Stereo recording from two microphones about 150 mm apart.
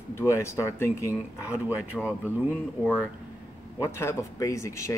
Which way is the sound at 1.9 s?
5° left (ahead or behind).